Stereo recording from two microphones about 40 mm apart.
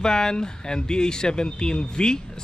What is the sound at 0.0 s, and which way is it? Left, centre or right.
Speech, centre.